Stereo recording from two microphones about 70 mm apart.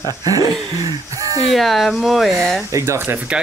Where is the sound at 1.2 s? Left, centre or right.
Right.